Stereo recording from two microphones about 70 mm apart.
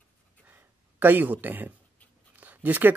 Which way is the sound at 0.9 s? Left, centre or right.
Right.